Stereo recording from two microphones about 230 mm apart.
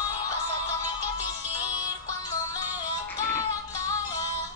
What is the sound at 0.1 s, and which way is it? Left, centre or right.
Music, centre.